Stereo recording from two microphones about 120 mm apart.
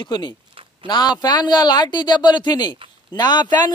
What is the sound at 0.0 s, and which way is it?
A man's voice, 35° left (ahead or behind).